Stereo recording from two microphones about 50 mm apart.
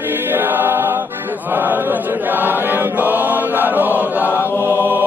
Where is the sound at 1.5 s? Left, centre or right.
Right.